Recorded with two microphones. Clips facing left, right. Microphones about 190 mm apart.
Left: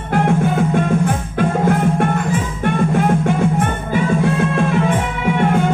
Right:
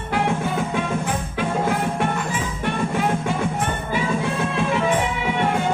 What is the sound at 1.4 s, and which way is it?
Music, 50° left (ahead or behind).